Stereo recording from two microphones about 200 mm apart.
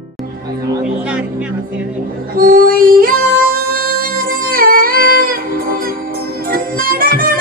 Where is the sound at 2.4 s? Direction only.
45° right (ahead or behind).